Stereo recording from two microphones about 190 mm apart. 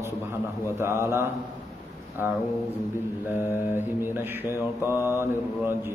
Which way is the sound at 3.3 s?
10° right (ahead or behind).